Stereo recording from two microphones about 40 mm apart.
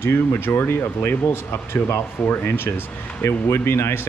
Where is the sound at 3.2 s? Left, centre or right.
Left.